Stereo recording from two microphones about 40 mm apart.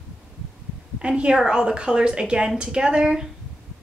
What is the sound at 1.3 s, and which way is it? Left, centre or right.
A woman's voice, centre.